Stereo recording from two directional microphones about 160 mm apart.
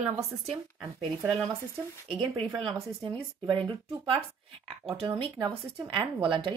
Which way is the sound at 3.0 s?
30° right (ahead or behind).